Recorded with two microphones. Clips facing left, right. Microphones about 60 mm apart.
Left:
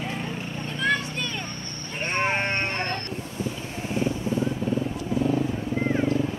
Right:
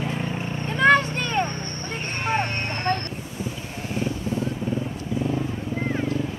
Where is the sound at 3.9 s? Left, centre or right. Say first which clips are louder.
Left 1 dB; left.